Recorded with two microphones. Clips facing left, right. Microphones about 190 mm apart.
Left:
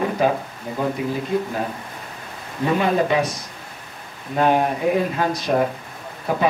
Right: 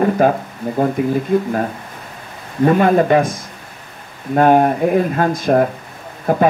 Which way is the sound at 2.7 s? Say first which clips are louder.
Right 6 dB; 50° right (ahead or behind).